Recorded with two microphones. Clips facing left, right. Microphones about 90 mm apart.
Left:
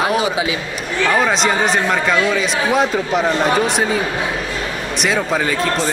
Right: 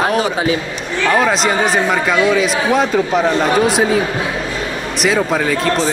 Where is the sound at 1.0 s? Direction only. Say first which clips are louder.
Right 2 dB; centre (ahead or behind).